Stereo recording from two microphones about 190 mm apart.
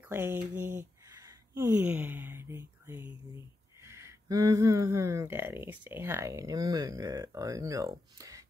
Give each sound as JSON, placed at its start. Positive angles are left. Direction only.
{"t": 0.1, "sound": "speech", "side_deg": -10}